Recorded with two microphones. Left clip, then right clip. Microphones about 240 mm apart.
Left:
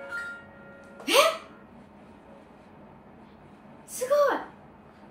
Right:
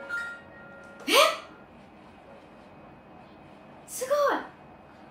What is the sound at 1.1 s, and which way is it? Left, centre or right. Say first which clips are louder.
Hiccup: even; centre.